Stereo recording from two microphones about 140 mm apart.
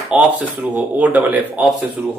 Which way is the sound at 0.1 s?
5° right (ahead or behind).